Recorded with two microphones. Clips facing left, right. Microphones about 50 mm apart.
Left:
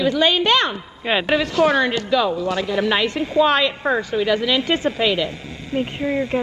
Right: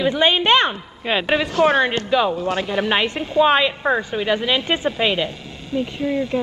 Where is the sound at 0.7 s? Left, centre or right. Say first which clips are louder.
Left 1 dB; centre.